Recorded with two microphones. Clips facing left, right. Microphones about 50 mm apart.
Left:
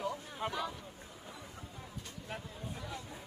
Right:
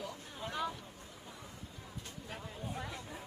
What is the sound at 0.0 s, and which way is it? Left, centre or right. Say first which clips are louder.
Vehicle: left 6 dB; left.